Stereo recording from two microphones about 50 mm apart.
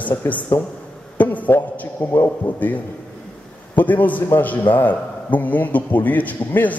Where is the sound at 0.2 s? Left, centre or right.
Left.